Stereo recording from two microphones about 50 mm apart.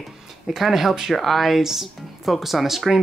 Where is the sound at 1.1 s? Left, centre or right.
Centre.